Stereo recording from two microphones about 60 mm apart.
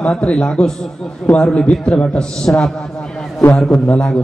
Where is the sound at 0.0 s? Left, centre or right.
Centre.